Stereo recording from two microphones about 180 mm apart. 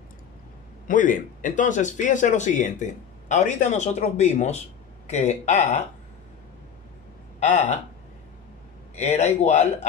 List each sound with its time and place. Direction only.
0.8 s speech: 45° left (ahead or behind)
7.3 s speech: 40° left (ahead or behind)
8.9 s speech: 40° left (ahead or behind)